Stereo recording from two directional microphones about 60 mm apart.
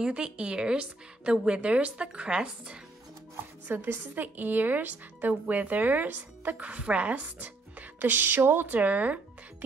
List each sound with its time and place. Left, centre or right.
0.0 s a woman's voice: centre
3.6 s speech: right